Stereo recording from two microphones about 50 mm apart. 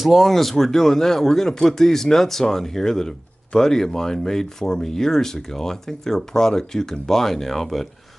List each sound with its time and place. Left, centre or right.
0.0 s speech: centre